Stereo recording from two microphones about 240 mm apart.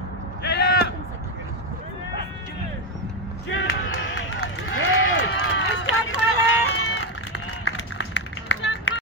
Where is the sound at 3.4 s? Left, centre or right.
Left.